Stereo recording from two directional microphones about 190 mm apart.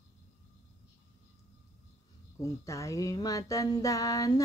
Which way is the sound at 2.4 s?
15° left (ahead or behind).